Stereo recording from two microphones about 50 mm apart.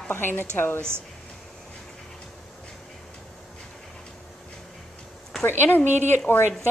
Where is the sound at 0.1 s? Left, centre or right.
Left.